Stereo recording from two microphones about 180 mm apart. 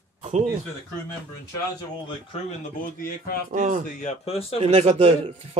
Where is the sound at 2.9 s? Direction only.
50° left (ahead or behind).